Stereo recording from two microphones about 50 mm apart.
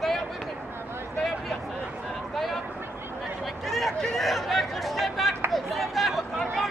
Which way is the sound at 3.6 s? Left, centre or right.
Centre.